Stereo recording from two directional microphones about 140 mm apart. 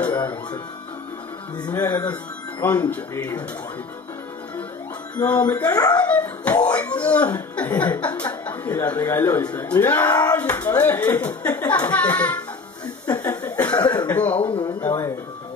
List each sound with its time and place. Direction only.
0.1 s speech: 30° left (ahead or behind)
1.9 s speech: 30° left (ahead or behind)
2.6 s speech: 10° left (ahead or behind)
5.1 s speech: 10° left (ahead or behind)
5.7 s speech: 30° left (ahead or behind)
6.0 s speech: 10° left (ahead or behind)
11.1 s speech: 30° left (ahead or behind)
11.7 s speech: 10° left (ahead or behind)
13.2 s chuckle: 15° left (ahead or behind)
13.6 s cough: 30° left (ahead or behind)
13.9 s a sound: 10° left (ahead or behind)
14.3 s a sound: 40° left (ahead or behind)
14.8 s music: 20° left (ahead or behind)